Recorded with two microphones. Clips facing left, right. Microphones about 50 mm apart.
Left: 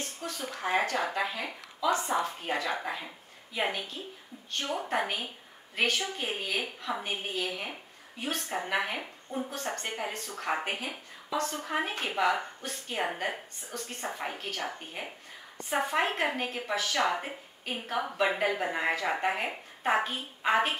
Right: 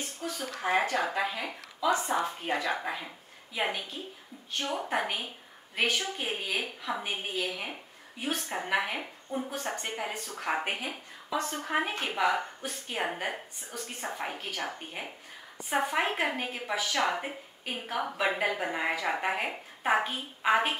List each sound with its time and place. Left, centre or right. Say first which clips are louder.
0.2 s a woman's voice: right 2 dB; centre
3.5 s a woman's voice: even; centre
10.7 s speech: right 1 dB; right
11.6 s a woman's voice: right 1 dB; centre